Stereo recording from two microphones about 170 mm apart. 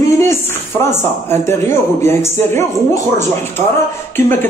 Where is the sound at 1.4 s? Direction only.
15° left (ahead or behind).